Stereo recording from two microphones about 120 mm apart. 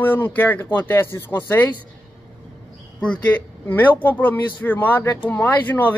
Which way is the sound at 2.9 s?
10° left (ahead or behind).